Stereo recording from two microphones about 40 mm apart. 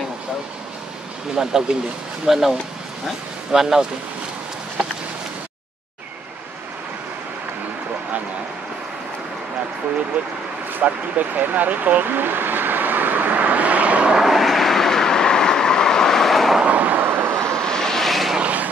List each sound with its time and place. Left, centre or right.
1.3 s speech: centre
10.1 s speech: right
10.7 s vehicle: right
14.1 s vehicle: centre
16.6 s vehicle: right
17.0 s vehicle: right
17.6 s vehicle: centre
18.4 s a sound: right